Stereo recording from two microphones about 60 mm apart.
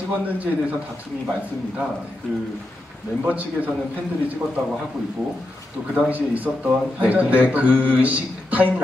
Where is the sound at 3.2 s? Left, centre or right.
Right.